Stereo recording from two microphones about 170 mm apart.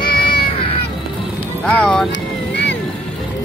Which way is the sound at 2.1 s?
90° left.